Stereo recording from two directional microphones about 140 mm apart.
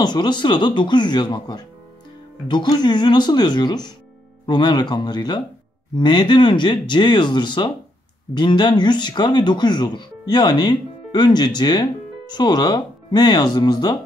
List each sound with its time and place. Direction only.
0.0 s speech: 30° left (ahead or behind)